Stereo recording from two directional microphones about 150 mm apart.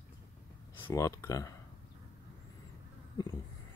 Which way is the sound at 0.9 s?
20° left (ahead or behind).